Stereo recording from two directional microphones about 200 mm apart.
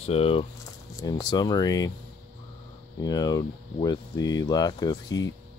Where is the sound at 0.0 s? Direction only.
30° left (ahead or behind).